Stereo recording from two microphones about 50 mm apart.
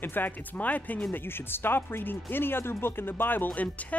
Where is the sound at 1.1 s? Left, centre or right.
Left.